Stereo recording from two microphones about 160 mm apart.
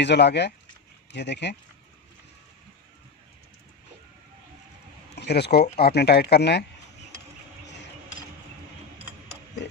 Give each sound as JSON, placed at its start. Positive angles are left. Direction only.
{"t": 0.0, "sound": "speech", "side_deg": 90}
{"t": 5.1, "sound": "speech", "side_deg": 90}